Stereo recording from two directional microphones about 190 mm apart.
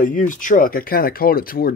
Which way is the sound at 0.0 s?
45° left (ahead or behind).